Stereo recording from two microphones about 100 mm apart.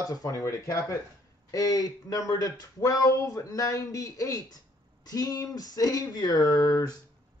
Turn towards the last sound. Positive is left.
turn(degrees=40)  # may be behind; listen again after turning